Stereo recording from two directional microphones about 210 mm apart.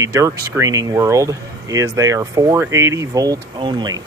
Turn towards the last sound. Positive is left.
turn(degrees=-20)  # may be behind; listen again after turning